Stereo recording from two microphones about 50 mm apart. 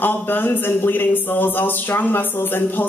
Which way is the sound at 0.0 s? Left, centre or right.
Left.